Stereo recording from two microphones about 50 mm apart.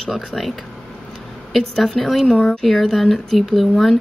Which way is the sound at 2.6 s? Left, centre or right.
Centre.